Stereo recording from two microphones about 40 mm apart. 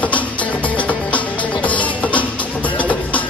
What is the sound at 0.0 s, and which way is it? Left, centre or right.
Music, left.